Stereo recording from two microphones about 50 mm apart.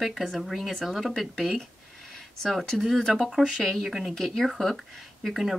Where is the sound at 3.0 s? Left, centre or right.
Centre.